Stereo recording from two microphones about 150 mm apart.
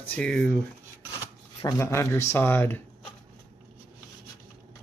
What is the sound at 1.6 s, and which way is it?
Speech, 20° left (ahead or behind).